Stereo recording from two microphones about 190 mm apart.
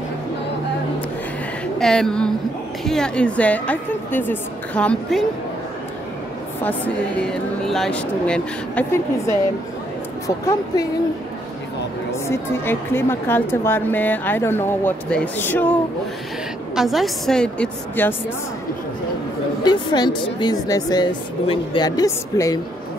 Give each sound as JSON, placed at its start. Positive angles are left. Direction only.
{"t": 1.8, "sound": "speech", "side_deg": 5}
{"t": 6.6, "sound": "speech", "side_deg": 5}
{"t": 12.3, "sound": "speech", "side_deg": 10}
{"t": 16.7, "sound": "speech", "side_deg": 0}
{"t": 19.6, "sound": "speech", "side_deg": 25}